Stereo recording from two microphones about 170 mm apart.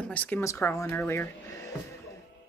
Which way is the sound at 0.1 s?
10° left (ahead or behind).